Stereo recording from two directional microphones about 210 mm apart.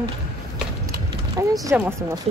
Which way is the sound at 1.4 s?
15° right (ahead or behind).